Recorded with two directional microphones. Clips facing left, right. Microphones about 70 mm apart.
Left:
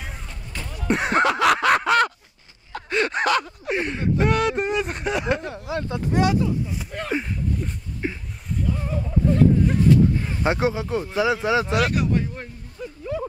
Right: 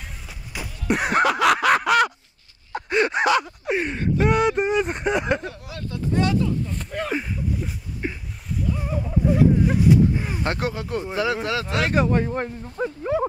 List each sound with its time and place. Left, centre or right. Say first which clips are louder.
0.6 s a sound: even; centre
1.2 s snicker: right 1 dB; centre
2.7 s gasp: right 2 dB; centre
4.3 s speech: right 2 dB; centre
5.5 s speech: left 6 dB; left
6.9 s a sound: right 1 dB; centre
10.4 s speech: left 7 dB; centre
11.8 s speech: right 2 dB; right
12.4 s speech: right 9 dB; right